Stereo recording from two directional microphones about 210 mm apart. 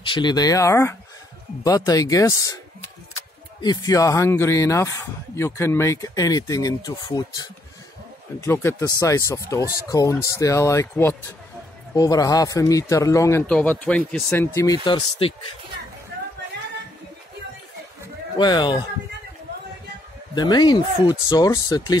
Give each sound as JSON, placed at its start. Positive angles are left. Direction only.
{"t": 0.0, "sound": "speech", "side_deg": 20}
{"t": 3.6, "sound": "speech", "side_deg": 20}
{"t": 18.4, "sound": "speech", "side_deg": 20}
{"t": 20.3, "sound": "speech", "side_deg": 20}